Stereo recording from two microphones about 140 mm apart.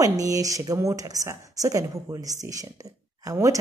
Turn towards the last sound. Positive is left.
turn(degrees=-25)  # may be behind; listen again after turning